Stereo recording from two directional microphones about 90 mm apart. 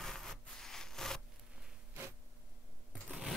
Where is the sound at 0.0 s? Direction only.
5° left (ahead or behind).